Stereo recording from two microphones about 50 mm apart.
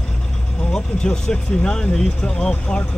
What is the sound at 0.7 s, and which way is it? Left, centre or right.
Speech, centre.